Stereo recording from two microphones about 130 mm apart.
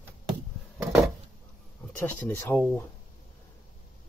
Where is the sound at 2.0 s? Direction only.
15° left (ahead or behind).